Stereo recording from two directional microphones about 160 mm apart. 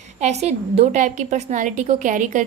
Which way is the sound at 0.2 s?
45° right (ahead or behind).